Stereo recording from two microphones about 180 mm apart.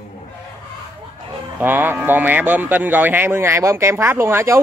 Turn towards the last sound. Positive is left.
turn(degrees=-15)  # may be behind; listen again after turning